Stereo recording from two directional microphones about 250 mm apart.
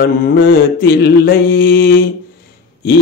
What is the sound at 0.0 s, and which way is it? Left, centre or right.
Mantra, left.